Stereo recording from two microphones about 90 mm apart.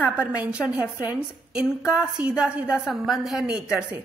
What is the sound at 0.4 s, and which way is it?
A woman's voice, 15° right (ahead or behind).